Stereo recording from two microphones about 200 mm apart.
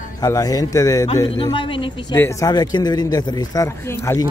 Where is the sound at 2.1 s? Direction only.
15° left (ahead or behind).